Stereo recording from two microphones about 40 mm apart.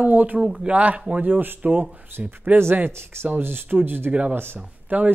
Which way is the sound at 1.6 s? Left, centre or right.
Right.